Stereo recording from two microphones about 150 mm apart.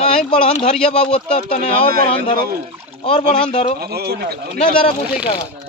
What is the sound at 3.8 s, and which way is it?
Speech, 90° right.